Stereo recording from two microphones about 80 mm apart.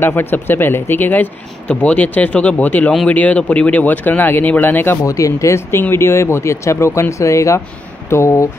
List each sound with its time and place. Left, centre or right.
0.0 s speech: left
5.0 s speech: left